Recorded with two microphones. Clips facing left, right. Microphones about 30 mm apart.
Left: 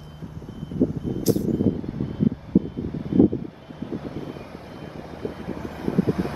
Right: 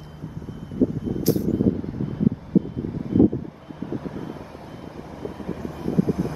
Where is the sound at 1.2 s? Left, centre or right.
Centre.